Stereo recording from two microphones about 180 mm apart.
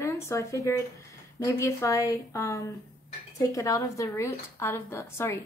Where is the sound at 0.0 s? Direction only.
15° left (ahead or behind).